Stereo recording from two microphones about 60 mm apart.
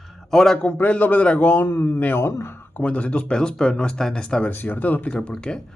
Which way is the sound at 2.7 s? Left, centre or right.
Left.